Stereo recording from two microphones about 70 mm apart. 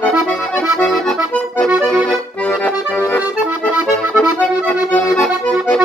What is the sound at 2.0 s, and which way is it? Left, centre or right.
Accordion, centre.